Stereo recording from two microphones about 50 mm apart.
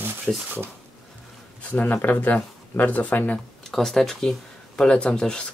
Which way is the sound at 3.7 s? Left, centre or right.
Centre.